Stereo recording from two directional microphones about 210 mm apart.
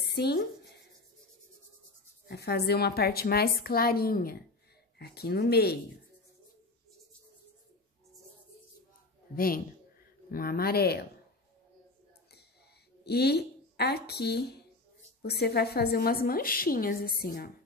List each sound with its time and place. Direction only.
0.1 s speech: 50° left (ahead or behind)
2.2 s a woman's voice: 50° left (ahead or behind)
9.3 s a woman's voice: 45° left (ahead or behind)
13.0 s a woman's voice: 50° left (ahead or behind)